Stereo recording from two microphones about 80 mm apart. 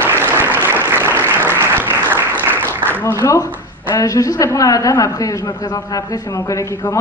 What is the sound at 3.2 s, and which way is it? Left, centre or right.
A man's voice, left.